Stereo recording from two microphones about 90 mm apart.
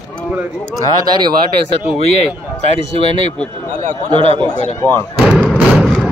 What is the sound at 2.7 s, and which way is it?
Speech, 90° right.